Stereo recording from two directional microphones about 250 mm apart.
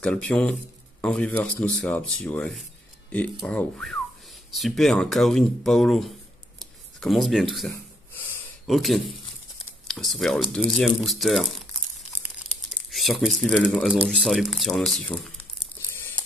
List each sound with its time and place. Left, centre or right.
0.0 s speech: centre
12.9 s speech: centre
16.0 s crumpling: centre